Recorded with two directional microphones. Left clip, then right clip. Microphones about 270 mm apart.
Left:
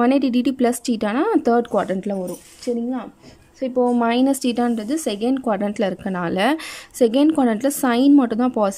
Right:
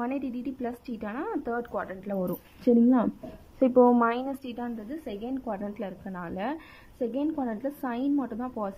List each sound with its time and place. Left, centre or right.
0.0 s speech: left
2.7 s speech: centre
3.7 s a woman's voice: centre; by 8.7 s left